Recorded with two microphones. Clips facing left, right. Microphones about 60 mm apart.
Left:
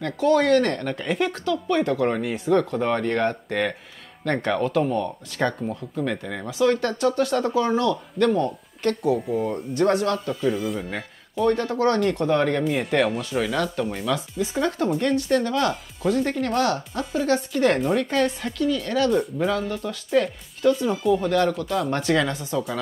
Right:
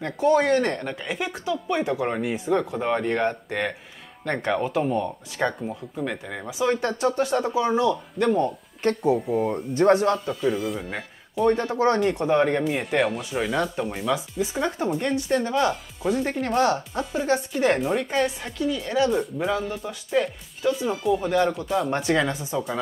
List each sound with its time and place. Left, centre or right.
0.0 s speech: right
9.2 s speech: centre
9.8 s speech: right
10.3 s speech: centre
11.4 s speech: right
12.6 s speech: centre